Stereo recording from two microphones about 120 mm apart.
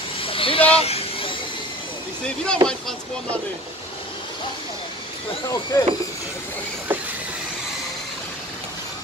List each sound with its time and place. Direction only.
0.2 s vehicle: 50° left (ahead or behind)
2.2 s speech: 10° left (ahead or behind)
5.5 s speech: 30° left (ahead or behind)